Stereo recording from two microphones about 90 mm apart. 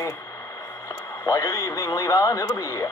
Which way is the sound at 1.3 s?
35° left (ahead or behind).